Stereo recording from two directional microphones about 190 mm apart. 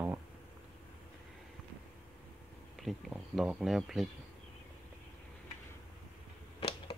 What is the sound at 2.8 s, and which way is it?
Speech, centre (ahead or behind).